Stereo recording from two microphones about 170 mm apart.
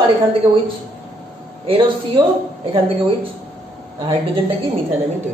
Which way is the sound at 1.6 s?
30° right (ahead or behind).